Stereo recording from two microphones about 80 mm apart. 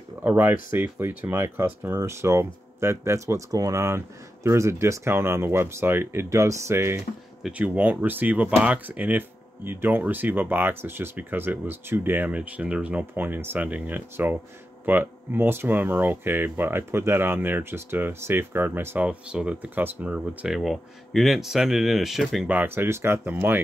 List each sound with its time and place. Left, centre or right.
0.2 s speech: right
7.5 s speech: centre
18.9 s speech: centre
20.2 s speech: centre
22.5 s speech: right